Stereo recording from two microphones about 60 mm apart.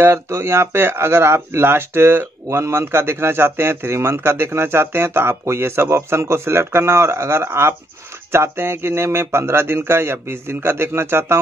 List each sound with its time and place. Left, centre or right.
0.0 s speech: right